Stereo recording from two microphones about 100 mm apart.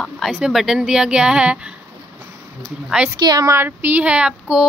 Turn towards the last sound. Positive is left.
turn(degrees=-10)  # may be behind; listen again after turning